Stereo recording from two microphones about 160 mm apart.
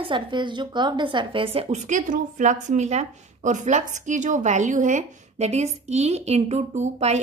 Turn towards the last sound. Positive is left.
turn(degrees=-45)  # may be behind; listen again after turning